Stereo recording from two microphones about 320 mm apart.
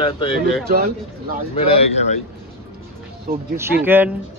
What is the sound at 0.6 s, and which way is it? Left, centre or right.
Speech, right.